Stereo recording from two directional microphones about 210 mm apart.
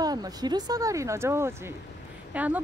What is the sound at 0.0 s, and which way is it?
Speech, 20° right (ahead or behind).